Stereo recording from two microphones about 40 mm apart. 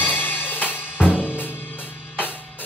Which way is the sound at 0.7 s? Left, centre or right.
Left.